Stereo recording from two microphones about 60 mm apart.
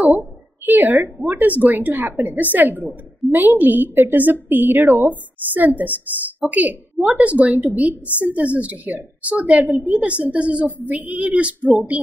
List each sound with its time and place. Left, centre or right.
0.7 s a woman's voice: right